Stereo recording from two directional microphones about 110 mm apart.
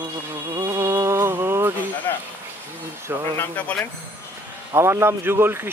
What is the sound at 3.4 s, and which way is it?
Speech, 15° left (ahead or behind).